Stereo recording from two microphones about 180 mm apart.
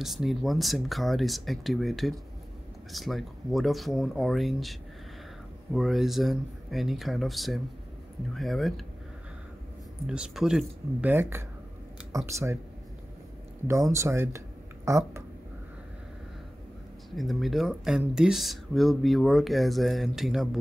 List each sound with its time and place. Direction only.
0.0 s speech: centre (ahead or behind)
10.0 s speech: 5° right (ahead or behind)
13.7 s speech: 15° right (ahead or behind)
17.1 s speech: centre (ahead or behind)